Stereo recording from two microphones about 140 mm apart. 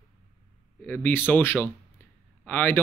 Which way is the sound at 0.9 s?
15° left (ahead or behind).